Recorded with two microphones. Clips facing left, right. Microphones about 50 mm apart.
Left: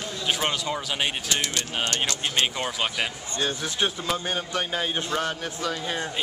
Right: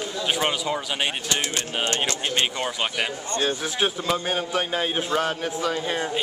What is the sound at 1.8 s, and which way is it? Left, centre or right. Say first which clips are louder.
Speech: right 2 dB; right.